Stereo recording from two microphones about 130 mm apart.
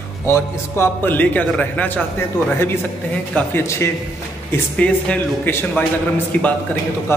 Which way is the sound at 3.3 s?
20° left (ahead or behind).